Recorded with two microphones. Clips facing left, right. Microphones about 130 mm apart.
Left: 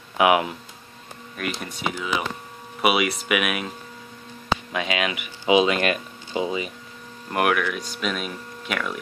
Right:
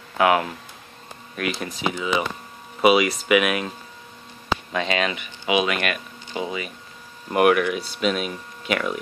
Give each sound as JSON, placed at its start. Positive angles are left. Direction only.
{"t": 0.2, "sound": "speech", "side_deg": 15}
{"t": 1.3, "sound": "speech", "side_deg": 0}
{"t": 4.7, "sound": "speech", "side_deg": 5}
{"t": 5.5, "sound": "speech", "side_deg": 30}
{"t": 7.2, "sound": "speech", "side_deg": 0}